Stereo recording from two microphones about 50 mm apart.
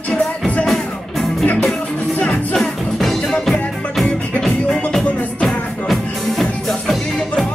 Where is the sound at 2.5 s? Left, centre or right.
Centre.